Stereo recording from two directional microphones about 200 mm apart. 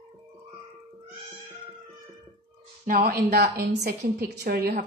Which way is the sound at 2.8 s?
45° right (ahead or behind).